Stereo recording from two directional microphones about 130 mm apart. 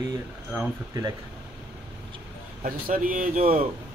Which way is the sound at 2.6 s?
90° right.